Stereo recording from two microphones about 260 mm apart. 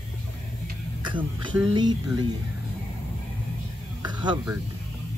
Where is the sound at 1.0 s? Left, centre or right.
Centre.